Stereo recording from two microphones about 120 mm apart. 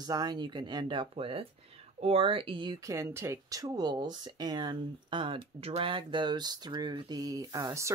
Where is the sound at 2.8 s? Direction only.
20° right (ahead or behind).